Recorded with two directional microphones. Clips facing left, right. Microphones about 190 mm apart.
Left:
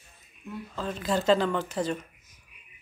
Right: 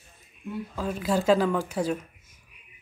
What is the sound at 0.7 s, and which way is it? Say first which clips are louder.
Speech: right 2 dB; 5° right (ahead or behind).